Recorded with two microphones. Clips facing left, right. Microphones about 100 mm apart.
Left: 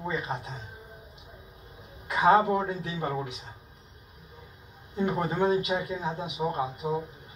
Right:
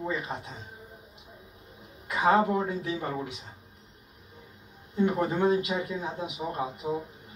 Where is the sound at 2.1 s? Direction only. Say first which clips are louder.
Left 2 dB; 20° left (ahead or behind).